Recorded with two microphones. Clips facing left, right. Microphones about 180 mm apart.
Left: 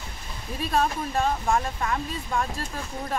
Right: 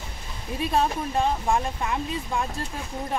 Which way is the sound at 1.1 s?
10° right (ahead or behind).